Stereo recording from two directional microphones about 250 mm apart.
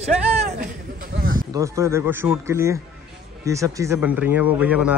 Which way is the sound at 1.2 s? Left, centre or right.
Right.